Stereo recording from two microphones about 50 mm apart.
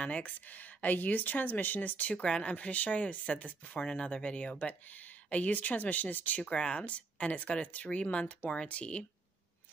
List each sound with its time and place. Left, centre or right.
0.0 s speech: left
6.5 s speech: left